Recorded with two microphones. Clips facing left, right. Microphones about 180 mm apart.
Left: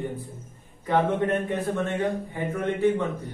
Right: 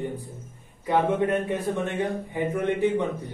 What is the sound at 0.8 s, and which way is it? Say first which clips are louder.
A man's voice: right 1 dB; 10° right (ahead or behind).